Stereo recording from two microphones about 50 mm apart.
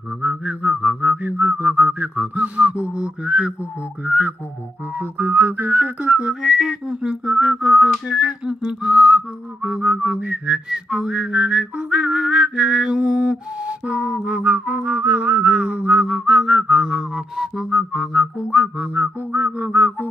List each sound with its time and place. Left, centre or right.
0.2 s whistling: centre
1.2 s whistling: right
2.1 s whistling: right
4.0 s whistling: right
4.9 s music: right
5.5 s whistling: right
6.4 s whistling: centre; by 10.6 s right
10.7 s whistling: centre
18.5 s whistling: right
18.9 s music: right